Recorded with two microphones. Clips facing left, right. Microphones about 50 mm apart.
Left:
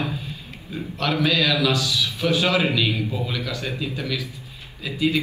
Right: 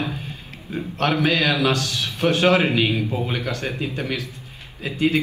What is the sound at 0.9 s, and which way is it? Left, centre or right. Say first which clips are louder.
A man's voice: right 2 dB; right.